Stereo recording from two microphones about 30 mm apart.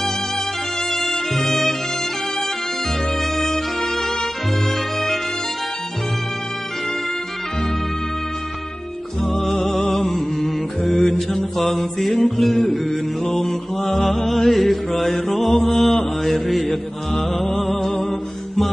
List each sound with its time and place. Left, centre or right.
0.8 s music: centre
3.3 s music: centre
9.2 s music: centre
9.7 s mantra: centre